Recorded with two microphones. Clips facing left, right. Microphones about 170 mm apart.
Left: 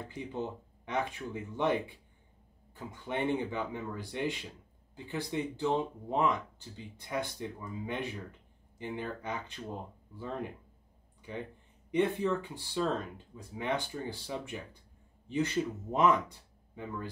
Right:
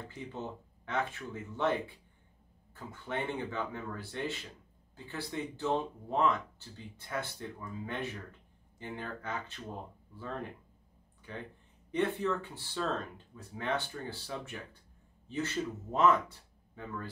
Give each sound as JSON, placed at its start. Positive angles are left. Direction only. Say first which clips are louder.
{"t": 0.8, "sound": "speech", "louder": "left 1 dB", "side_deg": 15}